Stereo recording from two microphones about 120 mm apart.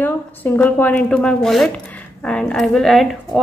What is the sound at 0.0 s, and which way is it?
A woman's voice, 15° left (ahead or behind).